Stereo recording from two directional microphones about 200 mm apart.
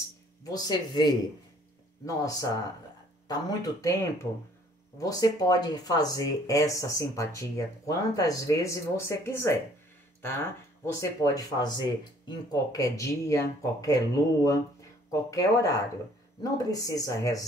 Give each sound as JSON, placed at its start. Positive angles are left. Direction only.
{"t": 0.4, "sound": "speech", "side_deg": 20}